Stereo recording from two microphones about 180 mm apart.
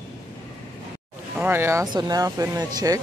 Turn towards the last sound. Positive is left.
turn(degrees=-20)  # may be behind; listen again after turning